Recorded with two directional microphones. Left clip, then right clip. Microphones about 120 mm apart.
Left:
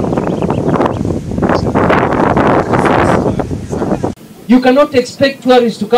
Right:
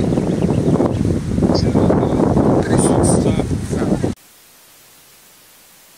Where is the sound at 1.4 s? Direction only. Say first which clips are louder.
Left 5 dB; 25° right (ahead or behind).